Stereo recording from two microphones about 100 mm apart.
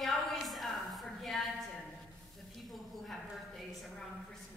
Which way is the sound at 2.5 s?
Centre (ahead or behind).